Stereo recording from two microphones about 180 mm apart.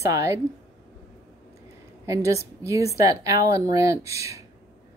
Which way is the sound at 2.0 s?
15° right (ahead or behind).